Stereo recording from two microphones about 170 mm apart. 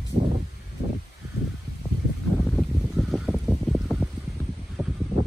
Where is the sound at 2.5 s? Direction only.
Centre (ahead or behind).